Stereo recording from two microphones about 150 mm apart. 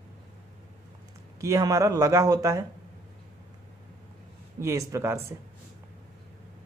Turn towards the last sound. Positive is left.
turn(degrees=-15)  # may be behind; listen again after turning